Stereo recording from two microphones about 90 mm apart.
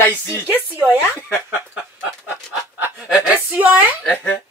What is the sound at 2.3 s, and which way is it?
Snicker, 20° right (ahead or behind).